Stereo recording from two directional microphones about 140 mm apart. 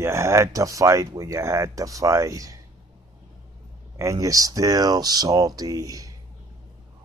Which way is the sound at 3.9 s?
25° right (ahead or behind).